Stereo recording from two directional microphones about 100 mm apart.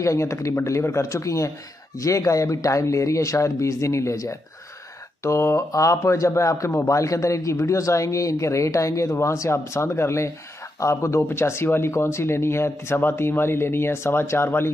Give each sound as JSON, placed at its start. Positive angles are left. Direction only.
{"t": 0.0, "sound": "speech", "side_deg": 30}